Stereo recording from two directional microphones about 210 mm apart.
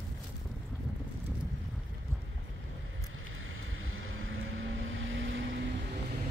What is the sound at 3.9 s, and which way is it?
Vehicle, 75° right (ahead or behind).